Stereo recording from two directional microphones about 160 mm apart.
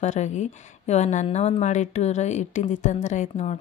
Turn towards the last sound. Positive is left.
turn(degrees=45)  # may be behind; listen again after turning